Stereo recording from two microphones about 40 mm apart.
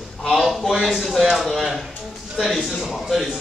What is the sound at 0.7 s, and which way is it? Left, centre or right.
Speech, centre.